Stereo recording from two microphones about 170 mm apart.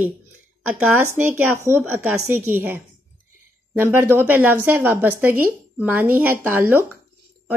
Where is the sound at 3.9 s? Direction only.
10° right (ahead or behind).